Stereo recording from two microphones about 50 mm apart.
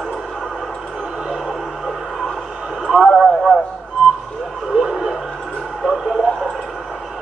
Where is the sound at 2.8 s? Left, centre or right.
Centre.